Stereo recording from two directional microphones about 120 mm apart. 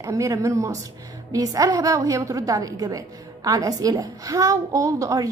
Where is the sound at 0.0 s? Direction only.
25° right (ahead or behind).